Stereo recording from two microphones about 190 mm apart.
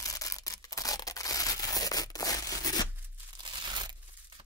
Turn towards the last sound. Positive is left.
turn(degrees=-25)  # may be behind; listen again after turning